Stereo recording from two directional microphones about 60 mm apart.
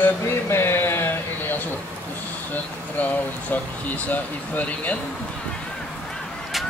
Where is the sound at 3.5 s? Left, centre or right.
Left.